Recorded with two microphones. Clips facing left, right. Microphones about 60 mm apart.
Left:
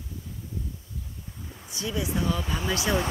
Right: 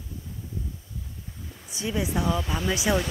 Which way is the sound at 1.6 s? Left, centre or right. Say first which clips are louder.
Right 2 dB; right.